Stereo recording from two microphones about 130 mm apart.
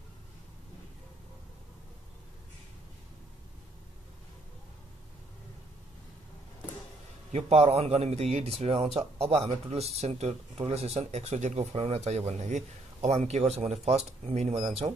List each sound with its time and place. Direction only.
7.3 s speech: 55° right (ahead or behind)